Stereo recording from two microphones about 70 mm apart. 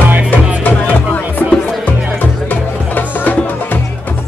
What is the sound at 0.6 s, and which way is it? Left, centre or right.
Music, left.